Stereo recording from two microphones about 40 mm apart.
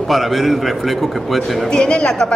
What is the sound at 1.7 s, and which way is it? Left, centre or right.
Speech, left.